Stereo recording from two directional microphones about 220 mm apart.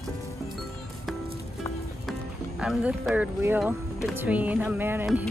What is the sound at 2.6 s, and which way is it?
Speech, 5° right (ahead or behind).